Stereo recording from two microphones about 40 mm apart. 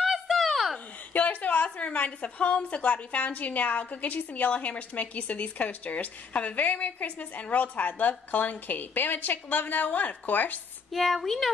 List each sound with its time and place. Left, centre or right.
0.0 s a sound: centre
1.1 s a woman's voice: left
10.9 s speech: centre